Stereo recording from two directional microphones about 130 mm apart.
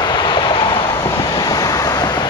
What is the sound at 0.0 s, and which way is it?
Vehicle, 35° left (ahead or behind).